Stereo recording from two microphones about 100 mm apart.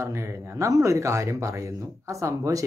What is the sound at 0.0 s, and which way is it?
Speech, 30° right (ahead or behind).